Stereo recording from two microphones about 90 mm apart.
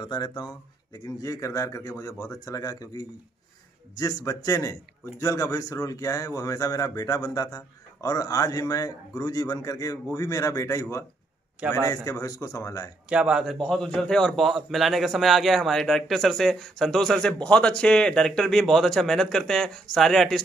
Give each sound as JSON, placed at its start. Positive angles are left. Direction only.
{"t": 0.0, "sound": "speech", "side_deg": 50}
{"t": 0.9, "sound": "speech", "side_deg": 40}
{"t": 13.1, "sound": "speech", "side_deg": -10}
{"t": 13.5, "sound": "a man's voice", "side_deg": 5}